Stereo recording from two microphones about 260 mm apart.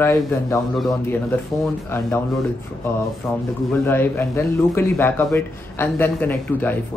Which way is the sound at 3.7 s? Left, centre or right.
Centre.